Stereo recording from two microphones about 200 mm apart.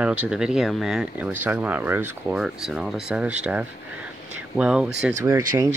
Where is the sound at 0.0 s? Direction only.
5° right (ahead or behind).